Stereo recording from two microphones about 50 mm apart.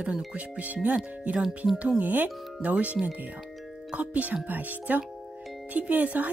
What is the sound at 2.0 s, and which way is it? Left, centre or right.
Speech, right.